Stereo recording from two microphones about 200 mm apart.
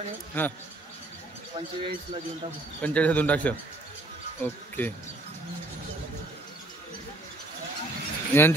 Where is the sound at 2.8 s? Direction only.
5° left (ahead or behind).